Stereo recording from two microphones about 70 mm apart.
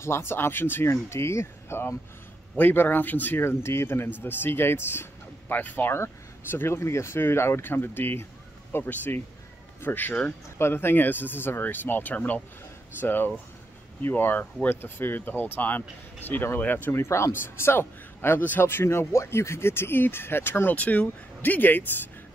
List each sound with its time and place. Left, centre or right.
0.0 s speech: left
2.5 s speech: left
3.3 s speech: left